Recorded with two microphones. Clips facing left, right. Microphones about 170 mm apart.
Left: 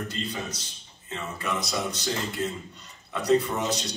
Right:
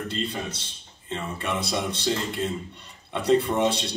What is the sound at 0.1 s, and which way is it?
A man's voice, 30° right (ahead or behind).